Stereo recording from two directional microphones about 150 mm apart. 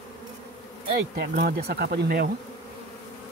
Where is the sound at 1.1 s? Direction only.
90° right.